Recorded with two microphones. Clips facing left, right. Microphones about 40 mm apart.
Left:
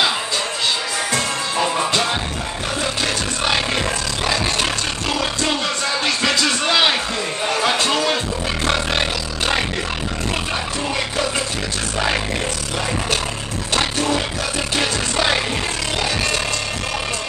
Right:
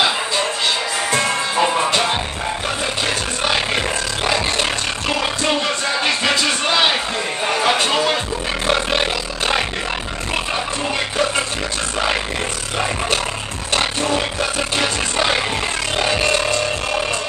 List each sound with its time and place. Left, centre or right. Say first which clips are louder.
1.1 s music: right 4 dB; right
3.7 s vehicle: right 1 dB; centre
6.0 s music: right 1 dB; right
13.7 s music: right 1 dB; right
16.0 s a sound: right 5 dB; right